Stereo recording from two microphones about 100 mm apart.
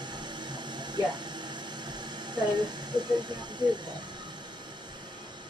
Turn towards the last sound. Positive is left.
turn(degrees=-45)  # may be behind; listen again after turning